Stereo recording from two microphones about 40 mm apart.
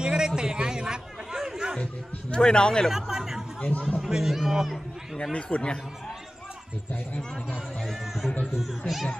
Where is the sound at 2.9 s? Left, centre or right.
Centre.